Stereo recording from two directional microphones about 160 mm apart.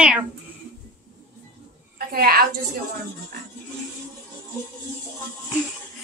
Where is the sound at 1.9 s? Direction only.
65° right (ahead or behind).